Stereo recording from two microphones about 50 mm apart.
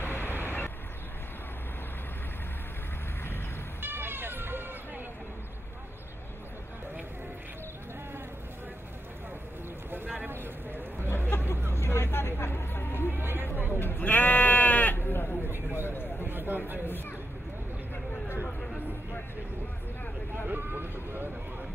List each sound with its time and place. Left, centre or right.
0.0 s vehicle: left
3.8 s hubbub: right
10.0 s vehicle: right
11.2 s vehicle: left
13.1 s a sound: right
13.5 s sheep: left
15.7 s a sound: left
16.3 s a sound: right
20.4 s vehicle: right